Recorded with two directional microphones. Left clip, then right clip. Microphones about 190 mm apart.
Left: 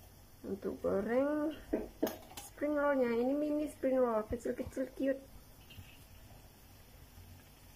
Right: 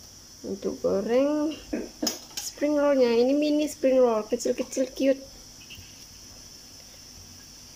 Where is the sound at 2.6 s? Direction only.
20° right (ahead or behind).